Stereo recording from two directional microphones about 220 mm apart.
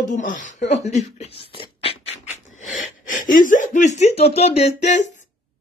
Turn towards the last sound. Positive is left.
turn(degrees=30)  # may be behind; listen again after turning